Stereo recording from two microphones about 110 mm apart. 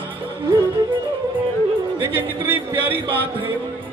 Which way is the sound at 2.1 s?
20° right (ahead or behind).